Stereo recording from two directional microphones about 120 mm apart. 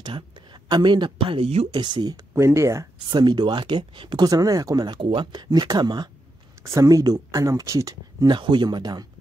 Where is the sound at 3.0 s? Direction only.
40° right (ahead or behind).